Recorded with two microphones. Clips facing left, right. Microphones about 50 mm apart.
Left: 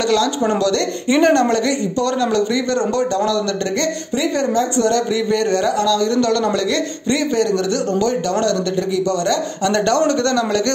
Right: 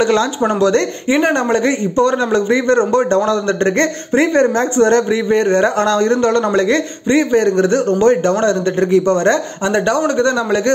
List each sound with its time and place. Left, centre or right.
0.0 s a man's voice: right
9.7 s speech: centre